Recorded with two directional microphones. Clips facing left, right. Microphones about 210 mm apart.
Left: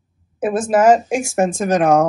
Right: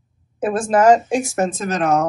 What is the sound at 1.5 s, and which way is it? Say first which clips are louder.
Speech: left 4 dB; 50° left (ahead or behind).